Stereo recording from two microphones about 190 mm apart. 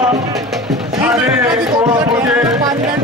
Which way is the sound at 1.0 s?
10° right (ahead or behind).